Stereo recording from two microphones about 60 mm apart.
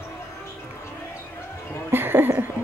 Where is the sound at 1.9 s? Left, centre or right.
Right.